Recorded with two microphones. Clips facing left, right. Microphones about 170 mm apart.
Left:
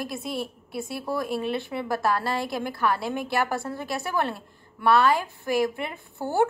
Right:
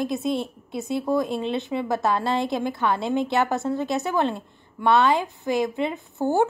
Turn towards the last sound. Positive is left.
turn(degrees=-20)  # may be behind; listen again after turning